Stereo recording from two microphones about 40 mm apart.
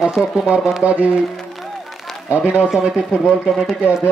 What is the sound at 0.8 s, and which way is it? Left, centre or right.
Speech, right.